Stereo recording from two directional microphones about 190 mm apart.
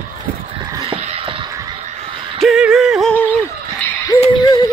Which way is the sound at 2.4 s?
Centre (ahead or behind).